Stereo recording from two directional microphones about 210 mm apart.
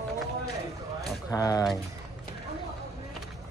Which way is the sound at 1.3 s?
15° left (ahead or behind).